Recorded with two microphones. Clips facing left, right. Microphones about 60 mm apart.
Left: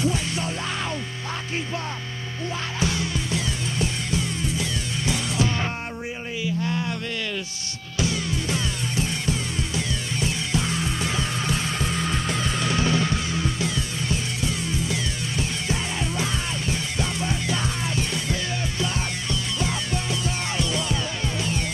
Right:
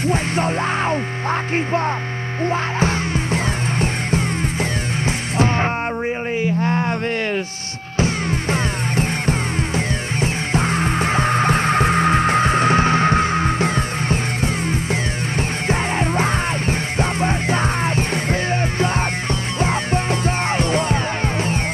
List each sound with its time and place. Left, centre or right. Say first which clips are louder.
0.0 s music: right 6 dB; right
2.4 s music: right 8 dB; right
6.4 s a sound: right 5 dB; right
8.0 s music: right 5 dB; right